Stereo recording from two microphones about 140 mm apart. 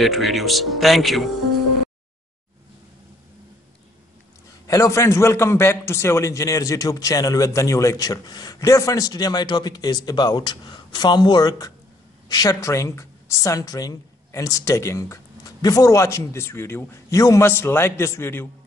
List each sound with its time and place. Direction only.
0.0 s speech: centre (ahead or behind)
4.6 s a man's voice: 25° left (ahead or behind)